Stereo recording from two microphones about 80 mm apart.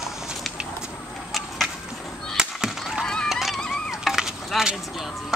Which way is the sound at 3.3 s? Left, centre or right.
Centre.